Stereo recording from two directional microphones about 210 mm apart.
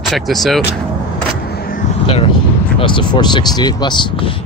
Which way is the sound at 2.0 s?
25° left (ahead or behind).